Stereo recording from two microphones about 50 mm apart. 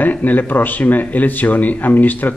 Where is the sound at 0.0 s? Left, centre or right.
Left.